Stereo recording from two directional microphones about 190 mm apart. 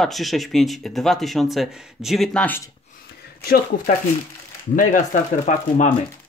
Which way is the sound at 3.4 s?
50° left (ahead or behind).